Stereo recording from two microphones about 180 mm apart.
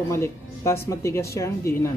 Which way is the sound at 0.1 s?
15° left (ahead or behind).